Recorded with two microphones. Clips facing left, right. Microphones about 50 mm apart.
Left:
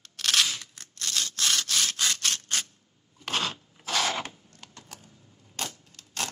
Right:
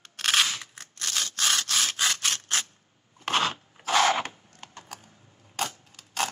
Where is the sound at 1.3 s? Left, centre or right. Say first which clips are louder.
Right 2 dB; centre.